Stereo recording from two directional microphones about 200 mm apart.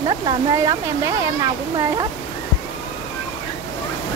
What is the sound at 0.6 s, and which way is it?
Speech, 15° right (ahead or behind).